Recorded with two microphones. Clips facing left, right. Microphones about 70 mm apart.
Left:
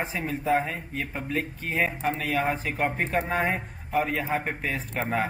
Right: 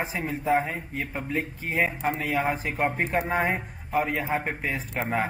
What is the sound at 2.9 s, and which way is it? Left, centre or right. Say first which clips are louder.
Speech: right 1 dB; centre.